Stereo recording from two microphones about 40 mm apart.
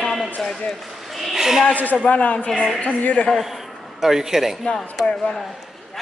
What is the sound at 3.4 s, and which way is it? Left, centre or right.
A man's voice, centre.